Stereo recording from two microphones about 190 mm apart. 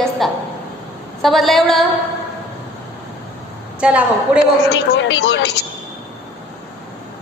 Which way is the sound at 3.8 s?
5° right (ahead or behind).